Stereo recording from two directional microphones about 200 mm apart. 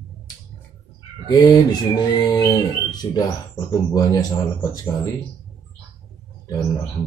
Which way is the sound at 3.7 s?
20° left (ahead or behind).